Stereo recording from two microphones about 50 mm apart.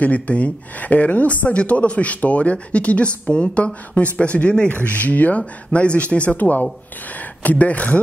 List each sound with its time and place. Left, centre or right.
0.0 s a woman's voice: left